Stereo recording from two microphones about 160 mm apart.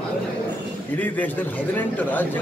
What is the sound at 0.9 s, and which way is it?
A man's voice, 10° left (ahead or behind).